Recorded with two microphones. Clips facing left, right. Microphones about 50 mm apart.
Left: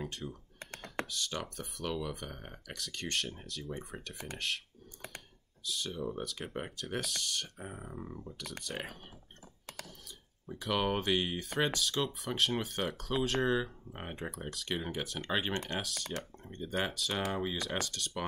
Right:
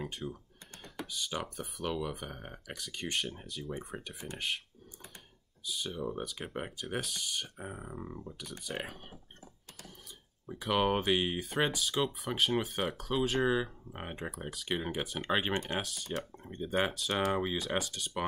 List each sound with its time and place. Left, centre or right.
0.0 s speech: centre
0.7 s computer keyboard: left
1.1 s speech: centre
5.7 s speech: centre
10.4 s speech: centre
17.3 s speech: centre